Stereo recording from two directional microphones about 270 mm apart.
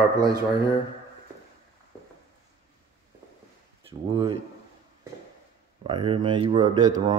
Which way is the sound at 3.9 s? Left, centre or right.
Centre.